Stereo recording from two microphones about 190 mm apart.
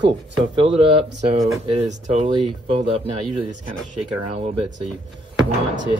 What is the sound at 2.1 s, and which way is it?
Speech, 30° right (ahead or behind).